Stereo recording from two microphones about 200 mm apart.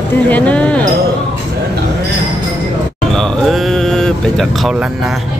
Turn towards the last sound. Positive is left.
turn(degrees=-5)  # may be behind; listen again after turning